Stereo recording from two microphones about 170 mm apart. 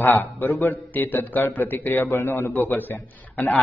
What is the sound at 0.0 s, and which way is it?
A man's voice, 10° left (ahead or behind).